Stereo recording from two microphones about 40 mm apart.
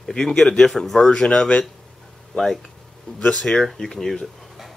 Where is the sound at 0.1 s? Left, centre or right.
Centre.